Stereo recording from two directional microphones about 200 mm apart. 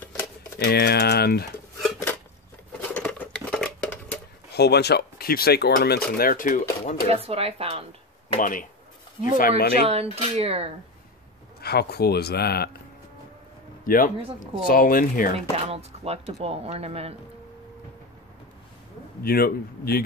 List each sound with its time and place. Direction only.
0.7 s speech: 55° left (ahead or behind)
2.9 s dishes: 5° left (ahead or behind)
4.6 s speech: 55° left (ahead or behind)
7.1 s speech: 30° right (ahead or behind)
8.4 s speech: 40° left (ahead or behind)
9.8 s speech: 30° right (ahead or behind)
11.6 s speech: 50° left (ahead or behind)
13.8 s speech: 45° left (ahead or behind)
15.5 s speech: 30° right (ahead or behind)
19.2 s speech: 50° left (ahead or behind)